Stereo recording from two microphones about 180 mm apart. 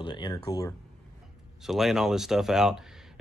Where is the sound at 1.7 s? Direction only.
Centre (ahead or behind).